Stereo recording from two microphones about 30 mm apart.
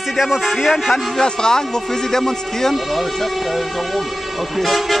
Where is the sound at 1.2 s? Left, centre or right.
Left.